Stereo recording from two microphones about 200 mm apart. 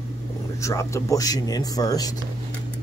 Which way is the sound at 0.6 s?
15° left (ahead or behind).